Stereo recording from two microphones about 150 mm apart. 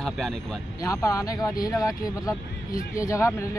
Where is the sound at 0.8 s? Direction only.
25° left (ahead or behind).